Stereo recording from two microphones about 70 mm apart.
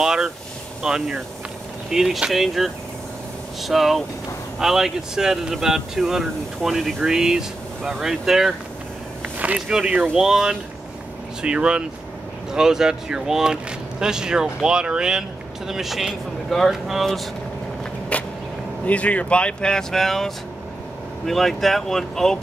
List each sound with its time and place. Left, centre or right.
0.0 s speech: centre
9.7 s speech: centre
18.1 s vehicle: centre
18.9 s speech: centre